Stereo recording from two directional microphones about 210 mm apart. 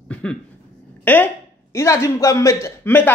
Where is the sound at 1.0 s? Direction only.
10° left (ahead or behind).